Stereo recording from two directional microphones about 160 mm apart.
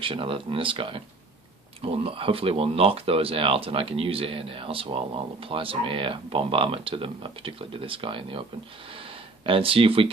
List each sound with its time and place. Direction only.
0.0 s speech: 35° right (ahead or behind)